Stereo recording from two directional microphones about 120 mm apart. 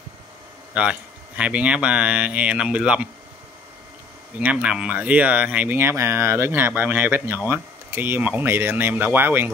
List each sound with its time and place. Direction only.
0.7 s speech: 10° right (ahead or behind)
4.4 s speech: 10° right (ahead or behind)